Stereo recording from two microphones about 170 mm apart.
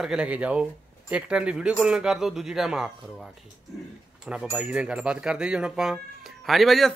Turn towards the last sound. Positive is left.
turn(degrees=0)  # may be behind; listen again after turning